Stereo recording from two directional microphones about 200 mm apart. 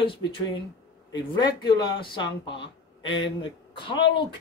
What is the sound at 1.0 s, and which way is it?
Speech, 20° left (ahead or behind).